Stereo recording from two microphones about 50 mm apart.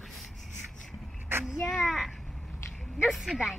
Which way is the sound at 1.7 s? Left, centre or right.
Centre.